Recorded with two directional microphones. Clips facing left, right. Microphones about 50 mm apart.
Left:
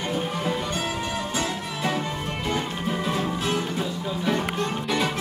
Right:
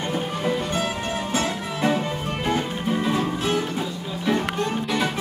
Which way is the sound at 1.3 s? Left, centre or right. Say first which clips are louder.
Right 3 dB; right.